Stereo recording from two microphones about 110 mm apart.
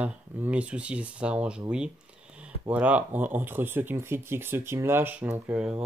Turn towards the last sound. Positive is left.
turn(degrees=-15)  # may be behind; listen again after turning